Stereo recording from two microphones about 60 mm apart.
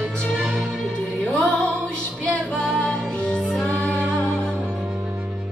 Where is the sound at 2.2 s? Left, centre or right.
Centre.